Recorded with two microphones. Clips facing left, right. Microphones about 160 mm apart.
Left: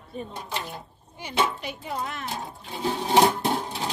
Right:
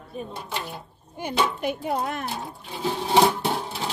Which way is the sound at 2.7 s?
Centre (ahead or behind).